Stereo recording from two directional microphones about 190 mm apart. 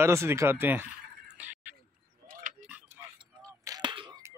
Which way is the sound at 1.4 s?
10° right (ahead or behind).